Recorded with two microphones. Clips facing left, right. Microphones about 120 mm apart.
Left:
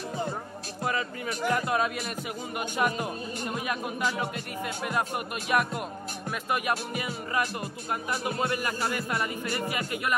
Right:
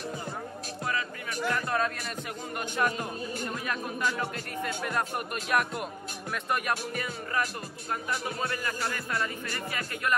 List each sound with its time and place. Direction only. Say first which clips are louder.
0.8 s music: left 4 dB; 25° left (ahead or behind)
1.5 s speech: left 3 dB; 15° left (ahead or behind)